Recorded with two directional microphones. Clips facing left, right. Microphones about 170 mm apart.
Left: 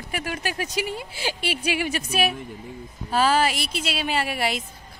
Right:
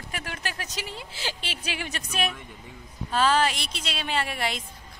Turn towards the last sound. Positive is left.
turn(degrees=5)  # may be behind; listen again after turning